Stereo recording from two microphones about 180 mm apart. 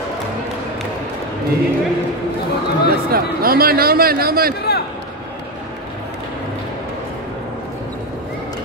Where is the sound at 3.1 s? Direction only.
55° right (ahead or behind).